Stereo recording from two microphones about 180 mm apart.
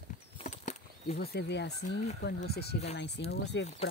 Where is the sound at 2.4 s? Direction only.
65° left (ahead or behind); by 3.7 s 80° left.